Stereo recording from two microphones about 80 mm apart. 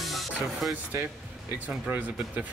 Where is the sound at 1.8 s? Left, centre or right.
Right.